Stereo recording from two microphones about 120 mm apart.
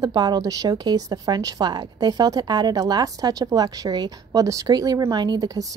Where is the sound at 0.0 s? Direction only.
35° right (ahead or behind).